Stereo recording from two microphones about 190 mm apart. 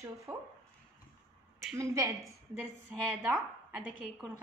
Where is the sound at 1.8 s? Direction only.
15° right (ahead or behind).